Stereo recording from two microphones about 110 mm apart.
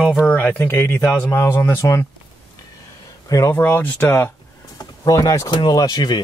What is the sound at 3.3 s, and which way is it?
Speech, 25° left (ahead or behind).